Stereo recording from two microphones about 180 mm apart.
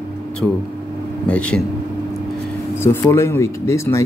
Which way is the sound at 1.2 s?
5° left (ahead or behind).